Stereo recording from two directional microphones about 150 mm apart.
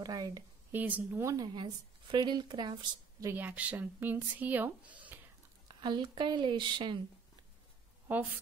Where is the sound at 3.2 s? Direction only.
10° right (ahead or behind).